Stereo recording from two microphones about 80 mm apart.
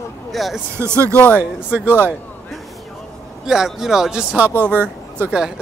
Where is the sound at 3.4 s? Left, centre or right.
Centre.